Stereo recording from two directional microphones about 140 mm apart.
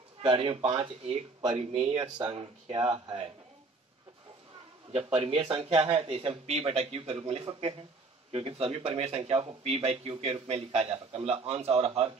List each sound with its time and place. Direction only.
0.2 s speech: 40° right (ahead or behind)
4.9 s speech: 40° right (ahead or behind)